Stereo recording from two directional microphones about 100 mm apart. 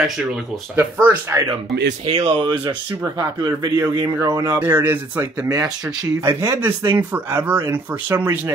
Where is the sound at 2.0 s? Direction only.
65° right (ahead or behind).